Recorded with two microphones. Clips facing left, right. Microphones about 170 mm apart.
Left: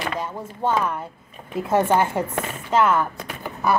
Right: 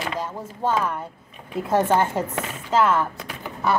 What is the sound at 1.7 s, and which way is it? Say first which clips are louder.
Speech: left 1 dB; 10° left (ahead or behind).